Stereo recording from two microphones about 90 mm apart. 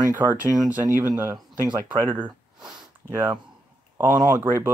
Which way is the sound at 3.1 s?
30° right (ahead or behind).